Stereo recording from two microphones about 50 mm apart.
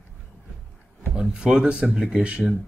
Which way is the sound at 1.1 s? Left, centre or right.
Centre.